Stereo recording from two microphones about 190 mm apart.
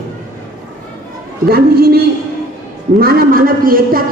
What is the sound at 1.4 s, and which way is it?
A woman's voice, 55° right (ahead or behind).